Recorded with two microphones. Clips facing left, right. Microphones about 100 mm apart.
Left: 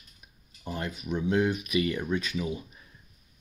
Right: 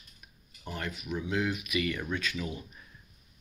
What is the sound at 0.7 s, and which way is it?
Speech, 25° left (ahead or behind).